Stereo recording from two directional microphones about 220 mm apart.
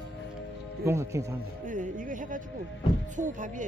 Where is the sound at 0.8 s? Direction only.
15° right (ahead or behind).